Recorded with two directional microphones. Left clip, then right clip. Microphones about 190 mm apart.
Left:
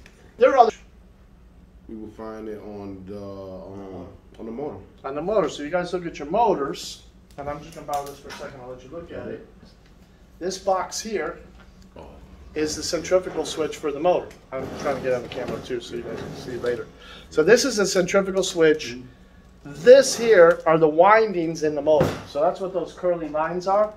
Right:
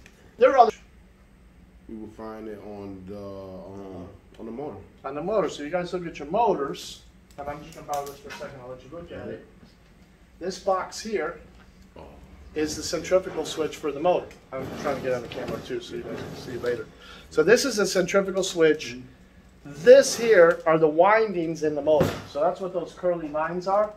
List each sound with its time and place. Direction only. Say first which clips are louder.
0.4 s speech: left 1 dB; 5° right (ahead or behind)
2.1 s mantra: left 4 dB; 10° right (ahead or behind); by 6.8 s 20° left (ahead or behind)
10.4 s speech: left 2 dB; 50° left (ahead or behind)
12.5 s speech: left 3 dB; 15° left (ahead or behind)